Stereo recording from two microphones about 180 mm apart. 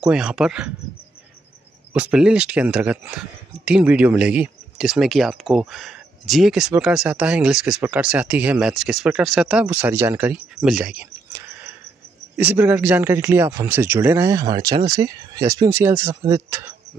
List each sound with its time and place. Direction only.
0.0 s speech: 5° right (ahead or behind)
2.0 s speech: 5° right (ahead or behind)